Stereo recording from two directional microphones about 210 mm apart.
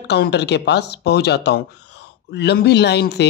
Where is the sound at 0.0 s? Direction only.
55° left (ahead or behind).